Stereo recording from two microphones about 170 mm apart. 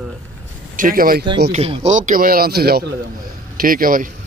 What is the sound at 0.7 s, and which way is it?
Speech, 55° right (ahead or behind).